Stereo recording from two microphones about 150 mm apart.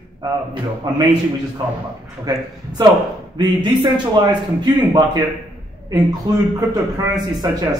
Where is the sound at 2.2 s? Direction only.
25° right (ahead or behind).